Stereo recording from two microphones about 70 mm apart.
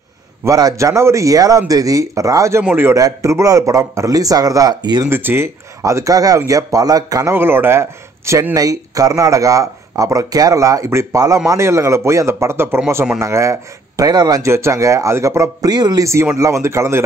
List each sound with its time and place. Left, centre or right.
0.5 s a man's voice: right
5.1 s a man's voice: right
5.8 s speech: right
7.2 s a man's voice: right
8.5 s speech: right
11.1 s a man's voice: right
14.4 s a man's voice: right
15.6 s speech: right
16.0 s a man's voice: right